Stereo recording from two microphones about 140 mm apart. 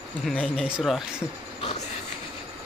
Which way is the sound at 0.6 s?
5° right (ahead or behind).